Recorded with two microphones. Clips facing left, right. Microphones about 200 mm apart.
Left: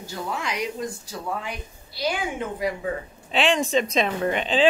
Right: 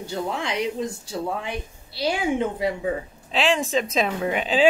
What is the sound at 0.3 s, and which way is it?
A woman's voice, 25° right (ahead or behind).